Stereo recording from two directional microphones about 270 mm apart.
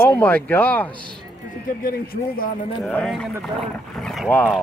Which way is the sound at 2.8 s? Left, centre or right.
Centre.